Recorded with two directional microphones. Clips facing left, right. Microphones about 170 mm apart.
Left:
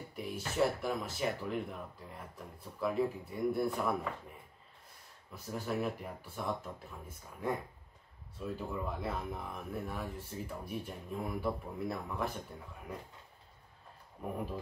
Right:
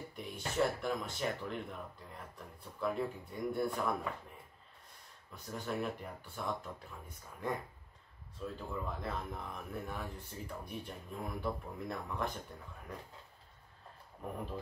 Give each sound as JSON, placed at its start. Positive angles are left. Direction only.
{"t": 0.1, "sound": "speech", "side_deg": 5}
{"t": 5.3, "sound": "speech", "side_deg": 5}
{"t": 14.2, "sound": "speech", "side_deg": 5}